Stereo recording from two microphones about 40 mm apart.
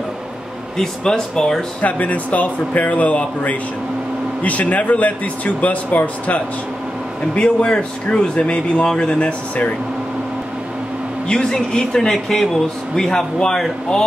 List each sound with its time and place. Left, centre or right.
0.7 s speech: centre
1.8 s a man's voice: left
4.4 s a man's voice: left
7.3 s speech: left
11.2 s speech: centre